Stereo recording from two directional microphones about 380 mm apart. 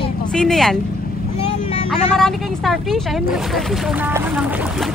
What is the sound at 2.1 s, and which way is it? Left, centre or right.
Speech, centre.